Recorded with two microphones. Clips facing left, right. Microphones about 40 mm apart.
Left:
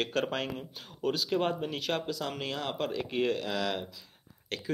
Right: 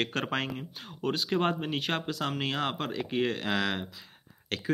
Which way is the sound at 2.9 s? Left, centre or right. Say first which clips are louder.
Even; centre.